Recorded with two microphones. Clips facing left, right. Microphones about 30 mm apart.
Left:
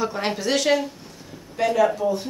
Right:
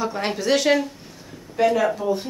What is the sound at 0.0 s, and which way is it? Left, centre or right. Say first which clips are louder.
Speech: even; centre.